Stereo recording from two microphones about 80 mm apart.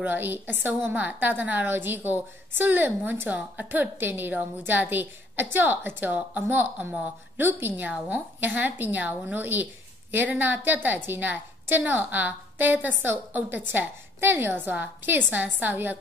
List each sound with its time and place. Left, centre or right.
0.0 s a woman's voice: right